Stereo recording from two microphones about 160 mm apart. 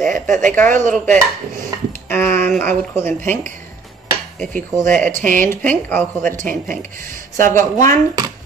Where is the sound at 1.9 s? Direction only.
15° left (ahead or behind).